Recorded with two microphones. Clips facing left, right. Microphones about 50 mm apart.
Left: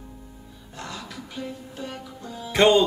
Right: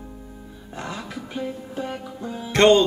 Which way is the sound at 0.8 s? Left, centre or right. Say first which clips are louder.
Right 4 dB; right.